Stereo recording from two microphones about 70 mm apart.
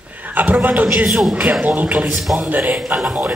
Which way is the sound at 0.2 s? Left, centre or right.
Right.